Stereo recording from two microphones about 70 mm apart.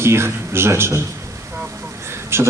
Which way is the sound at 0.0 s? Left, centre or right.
Right.